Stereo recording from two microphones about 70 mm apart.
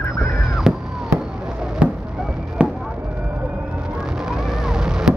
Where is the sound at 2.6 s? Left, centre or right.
Centre.